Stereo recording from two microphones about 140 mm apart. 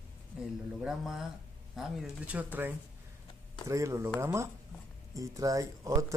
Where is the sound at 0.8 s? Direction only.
Centre (ahead or behind).